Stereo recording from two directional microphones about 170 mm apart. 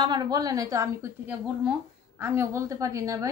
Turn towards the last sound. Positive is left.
turn(degrees=-20)  # may be behind; listen again after turning